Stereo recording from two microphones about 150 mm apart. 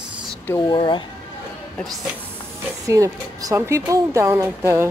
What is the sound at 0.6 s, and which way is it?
Speech, 30° left (ahead or behind).